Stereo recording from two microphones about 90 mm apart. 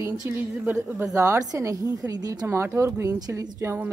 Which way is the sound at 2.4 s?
25° right (ahead or behind).